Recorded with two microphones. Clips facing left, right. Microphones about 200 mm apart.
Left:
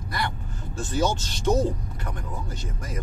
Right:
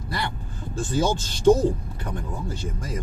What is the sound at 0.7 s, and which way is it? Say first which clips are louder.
Speech: right 2 dB; 30° right (ahead or behind).